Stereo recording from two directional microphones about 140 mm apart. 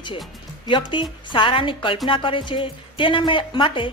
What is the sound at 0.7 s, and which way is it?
Speech, 35° left (ahead or behind).